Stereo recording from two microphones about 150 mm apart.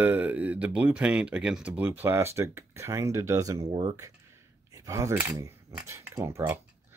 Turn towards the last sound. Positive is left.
turn(degrees=-15)  # may be behind; listen again after turning